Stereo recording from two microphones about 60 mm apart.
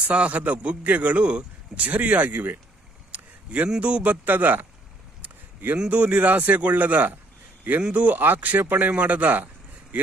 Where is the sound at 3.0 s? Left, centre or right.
Right.